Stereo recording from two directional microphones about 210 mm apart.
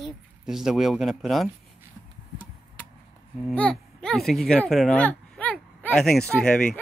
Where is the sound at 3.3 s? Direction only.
5° left (ahead or behind).